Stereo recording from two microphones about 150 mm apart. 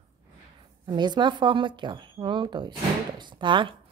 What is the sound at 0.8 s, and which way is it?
Speech, 30° right (ahead or behind).